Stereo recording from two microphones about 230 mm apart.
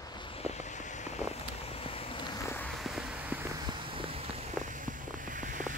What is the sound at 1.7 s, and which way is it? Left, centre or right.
Vehicle, left.